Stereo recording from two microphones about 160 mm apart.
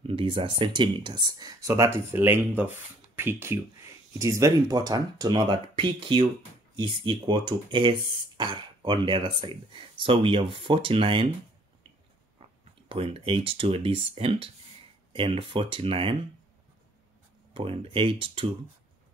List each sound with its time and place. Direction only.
0.0 s speech: 35° right (ahead or behind)
12.4 s speech: 35° right (ahead or behind)
17.6 s speech: 35° right (ahead or behind)